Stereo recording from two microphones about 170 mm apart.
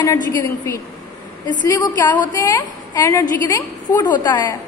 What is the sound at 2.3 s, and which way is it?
A woman's voice, 20° left (ahead or behind).